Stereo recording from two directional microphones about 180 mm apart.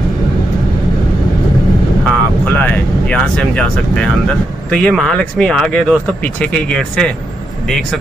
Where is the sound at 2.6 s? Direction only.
5° left (ahead or behind).